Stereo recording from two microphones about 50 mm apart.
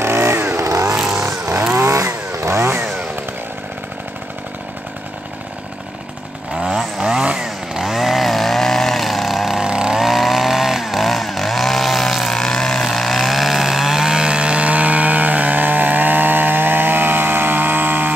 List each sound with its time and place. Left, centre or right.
0.0 s vehicle: right
1.9 s chainsaw: right
6.5 s chainsaw: centre
7.4 s chainsaw: centre; by 18.1 s right